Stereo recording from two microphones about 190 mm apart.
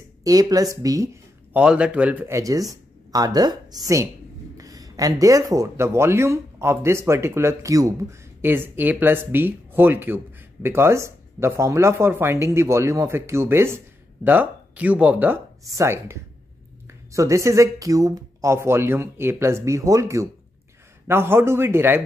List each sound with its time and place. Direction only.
0.2 s speech: 20° right (ahead or behind)
1.6 s speech: 5° right (ahead or behind)